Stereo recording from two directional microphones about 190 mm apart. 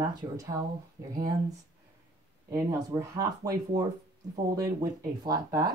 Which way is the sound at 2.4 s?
20° right (ahead or behind).